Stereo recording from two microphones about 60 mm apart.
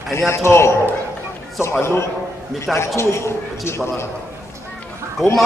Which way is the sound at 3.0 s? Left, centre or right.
Left.